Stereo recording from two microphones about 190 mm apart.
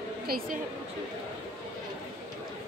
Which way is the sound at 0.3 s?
50° right (ahead or behind).